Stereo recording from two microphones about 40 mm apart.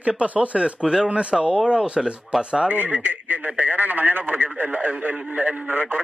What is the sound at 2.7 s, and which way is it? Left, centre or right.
Speech, right.